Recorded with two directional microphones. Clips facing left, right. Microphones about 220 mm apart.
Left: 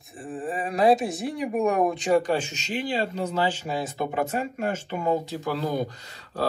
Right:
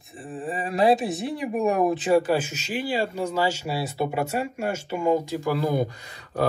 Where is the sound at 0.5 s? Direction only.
Centre (ahead or behind).